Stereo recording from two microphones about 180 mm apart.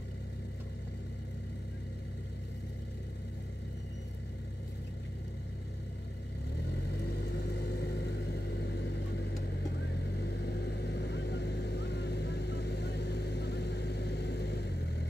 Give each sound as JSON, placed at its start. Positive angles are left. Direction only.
{"t": 6.5, "sound": "vehicle", "side_deg": 65}